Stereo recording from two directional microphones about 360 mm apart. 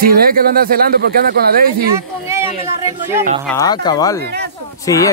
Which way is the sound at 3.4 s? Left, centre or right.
Centre.